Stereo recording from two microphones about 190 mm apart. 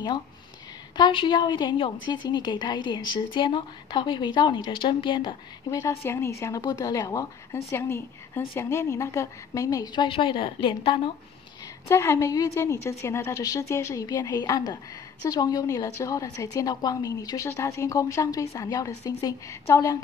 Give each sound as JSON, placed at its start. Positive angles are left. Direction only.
{"t": 0.9, "sound": "a woman's voice", "side_deg": 25}
{"t": 11.9, "sound": "a woman's voice", "side_deg": 15}